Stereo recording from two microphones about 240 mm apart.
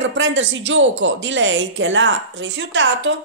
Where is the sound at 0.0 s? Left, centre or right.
Right.